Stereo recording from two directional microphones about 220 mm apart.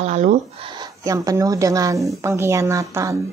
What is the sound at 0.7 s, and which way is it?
A woman's voice, 15° right (ahead or behind).